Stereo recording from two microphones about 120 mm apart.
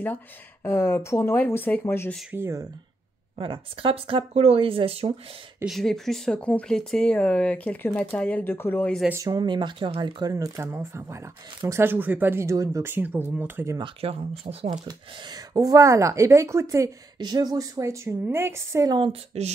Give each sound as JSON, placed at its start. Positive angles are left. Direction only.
{"t": 0.7, "sound": "speech", "side_deg": 20}
{"t": 2.3, "sound": "speech", "side_deg": -25}
{"t": 3.3, "sound": "speech", "side_deg": -45}
{"t": 5.7, "sound": "speech", "side_deg": 5}
{"t": 9.1, "sound": "speech", "side_deg": -30}
{"t": 10.3, "sound": "speech", "side_deg": -25}
{"t": 13.7, "sound": "speech", "side_deg": -45}
{"t": 14.4, "sound": "speech", "side_deg": -55}
{"t": 14.9, "sound": "speech", "side_deg": -35}
{"t": 18.9, "sound": "speech", "side_deg": -40}
{"t": 19.3, "sound": "speech", "side_deg": -60}